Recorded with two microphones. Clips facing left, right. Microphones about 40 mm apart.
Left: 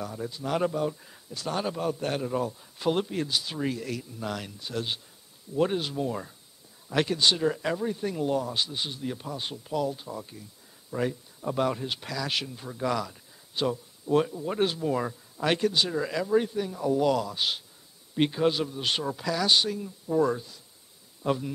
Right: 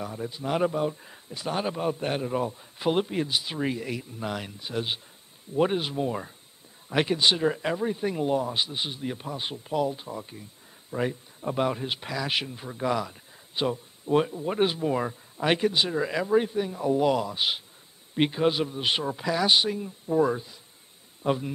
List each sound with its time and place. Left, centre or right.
0.0 s a man's voice: centre